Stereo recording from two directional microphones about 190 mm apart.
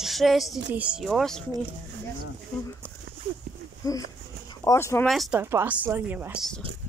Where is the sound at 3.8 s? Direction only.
20° left (ahead or behind).